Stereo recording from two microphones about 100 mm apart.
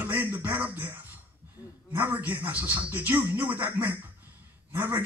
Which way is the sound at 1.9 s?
20° right (ahead or behind).